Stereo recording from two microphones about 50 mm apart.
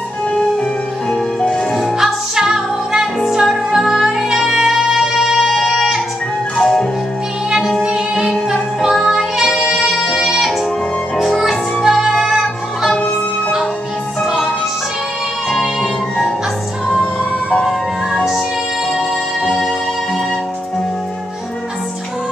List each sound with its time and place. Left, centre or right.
1.1 s music: centre
1.8 s music: centre
6.5 s music: centre
7.8 s music: centre
14.2 s music: centre
15.5 s music: centre
17.0 s music: left
17.6 s music: centre